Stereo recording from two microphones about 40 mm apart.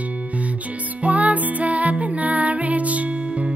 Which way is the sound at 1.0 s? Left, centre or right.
Right.